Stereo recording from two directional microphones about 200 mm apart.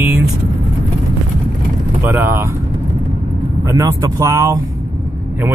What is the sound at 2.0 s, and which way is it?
Speech, 10° right (ahead or behind).